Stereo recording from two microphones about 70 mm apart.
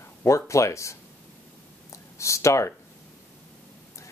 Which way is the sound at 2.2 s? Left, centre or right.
Left.